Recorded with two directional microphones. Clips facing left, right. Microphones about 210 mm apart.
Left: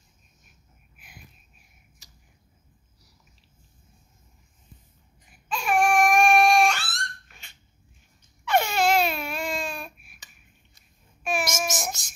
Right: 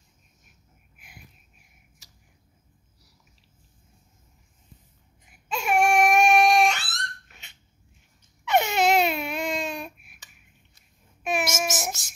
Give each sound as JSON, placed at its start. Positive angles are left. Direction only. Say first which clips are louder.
{"t": 5.5, "sound": "crying", "louder": "right 1 dB", "side_deg": -25}
{"t": 8.5, "sound": "baby cry", "louder": "right 1 dB", "side_deg": -20}
{"t": 11.4, "sound": "babbling", "louder": "right 1 dB", "side_deg": -5}